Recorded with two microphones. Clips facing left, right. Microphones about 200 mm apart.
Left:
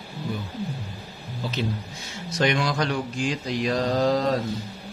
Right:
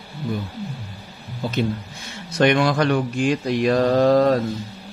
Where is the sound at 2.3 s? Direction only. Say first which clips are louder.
Right 6 dB; 60° right (ahead or behind).